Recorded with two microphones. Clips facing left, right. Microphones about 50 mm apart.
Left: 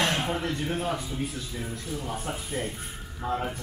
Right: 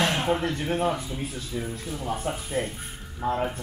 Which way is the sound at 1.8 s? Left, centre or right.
Centre.